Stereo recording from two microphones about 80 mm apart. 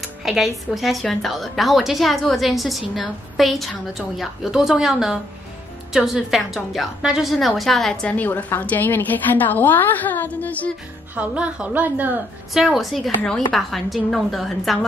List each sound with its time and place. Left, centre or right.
0.2 s a woman's voice: centre
8.1 s a woman's voice: centre
11.1 s a woman's voice: centre
12.5 s a woman's voice: centre